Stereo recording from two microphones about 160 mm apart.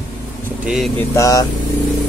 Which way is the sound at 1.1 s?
20° left (ahead or behind).